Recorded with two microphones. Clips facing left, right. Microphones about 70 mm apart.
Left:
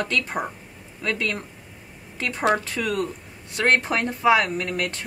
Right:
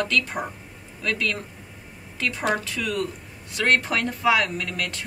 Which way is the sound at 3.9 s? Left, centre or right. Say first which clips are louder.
Left 2 dB; left.